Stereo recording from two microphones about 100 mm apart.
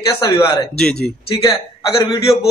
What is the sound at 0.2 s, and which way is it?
Speech, 45° left (ahead or behind).